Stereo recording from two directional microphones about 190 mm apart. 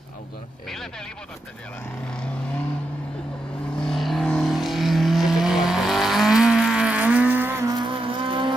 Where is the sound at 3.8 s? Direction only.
Centre (ahead or behind).